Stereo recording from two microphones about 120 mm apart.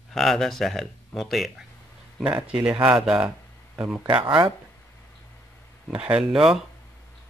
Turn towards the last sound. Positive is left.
turn(degrees=-5)  # may be behind; listen again after turning